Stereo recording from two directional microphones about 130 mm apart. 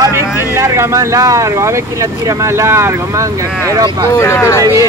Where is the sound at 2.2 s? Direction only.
20° right (ahead or behind).